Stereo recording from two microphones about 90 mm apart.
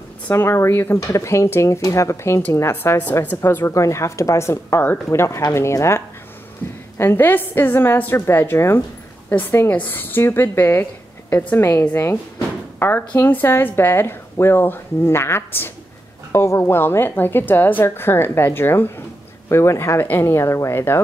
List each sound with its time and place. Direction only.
0.3 s a woman's voice: 30° left (ahead or behind)
0.9 s a woman's voice: 35° left (ahead or behind)
3.0 s a woman's voice: 15° left (ahead or behind)
6.6 s a sound: 20° left (ahead or behind)
7.0 s a woman's voice: 25° left (ahead or behind)